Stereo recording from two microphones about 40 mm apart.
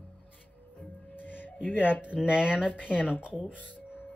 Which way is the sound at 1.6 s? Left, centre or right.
Left.